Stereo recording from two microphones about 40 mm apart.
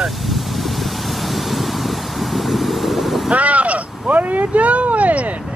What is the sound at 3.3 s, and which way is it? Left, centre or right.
Vehicle, right.